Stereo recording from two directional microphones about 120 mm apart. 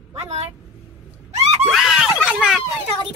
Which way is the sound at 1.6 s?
Centre (ahead or behind).